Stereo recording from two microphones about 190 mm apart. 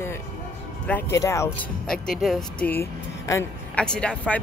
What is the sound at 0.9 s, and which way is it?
Speech, 10° left (ahead or behind).